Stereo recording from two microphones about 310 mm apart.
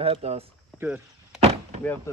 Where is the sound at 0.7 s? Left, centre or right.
Centre.